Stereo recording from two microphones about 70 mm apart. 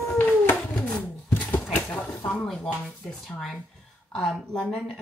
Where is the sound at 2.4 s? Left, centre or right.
Centre.